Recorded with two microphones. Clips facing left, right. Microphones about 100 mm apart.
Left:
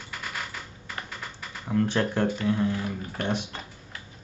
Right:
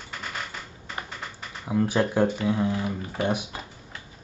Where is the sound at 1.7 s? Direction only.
10° right (ahead or behind).